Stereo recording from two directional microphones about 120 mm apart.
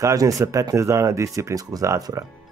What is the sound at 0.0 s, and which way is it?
Speech, 30° right (ahead or behind).